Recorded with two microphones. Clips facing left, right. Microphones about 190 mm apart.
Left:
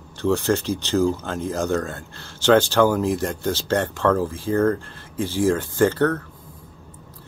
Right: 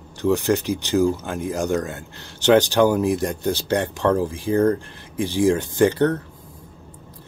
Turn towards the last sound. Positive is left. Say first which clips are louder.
# right 1 dB
turn(degrees=-15)  # may be behind; listen again after turning